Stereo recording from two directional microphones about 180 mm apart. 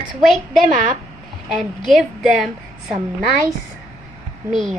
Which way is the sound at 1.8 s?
Centre (ahead or behind).